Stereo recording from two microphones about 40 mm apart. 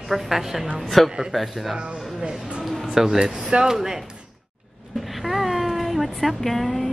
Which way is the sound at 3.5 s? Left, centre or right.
Centre.